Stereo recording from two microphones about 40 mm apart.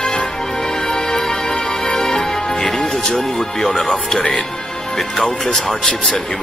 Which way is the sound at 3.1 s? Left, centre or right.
Left.